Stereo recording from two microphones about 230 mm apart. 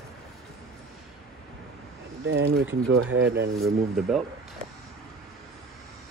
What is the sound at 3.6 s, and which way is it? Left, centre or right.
Speech, centre.